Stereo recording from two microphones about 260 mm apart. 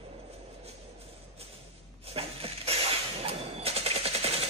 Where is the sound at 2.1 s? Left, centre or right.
Right.